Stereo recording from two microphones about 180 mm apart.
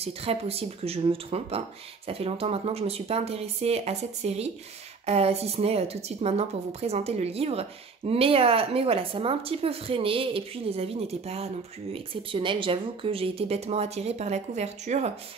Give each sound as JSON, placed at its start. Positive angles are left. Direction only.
{"t": 0.0, "sound": "a woman's voice", "side_deg": -35}